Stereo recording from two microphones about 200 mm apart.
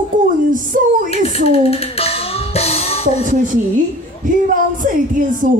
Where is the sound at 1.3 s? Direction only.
30° left (ahead or behind).